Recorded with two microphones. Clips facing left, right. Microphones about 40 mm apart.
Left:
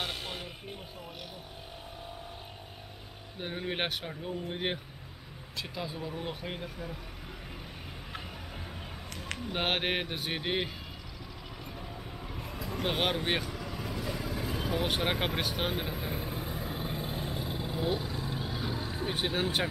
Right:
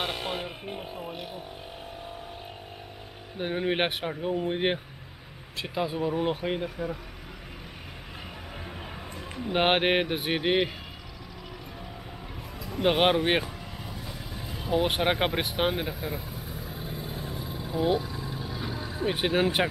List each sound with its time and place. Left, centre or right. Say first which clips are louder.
0.0 s a sound: right 6 dB; right
3.3 s speech: right 7 dB; right
9.4 s speech: right 8 dB; right
12.8 s speech: right 8 dB; right
14.9 s speech: right 5 dB; right
15.9 s speech: right 3 dB; centre
16.2 s vehicle: left 2 dB; left
17.7 s vehicle: right 8 dB; centre
19.0 s speech: right 7 dB; centre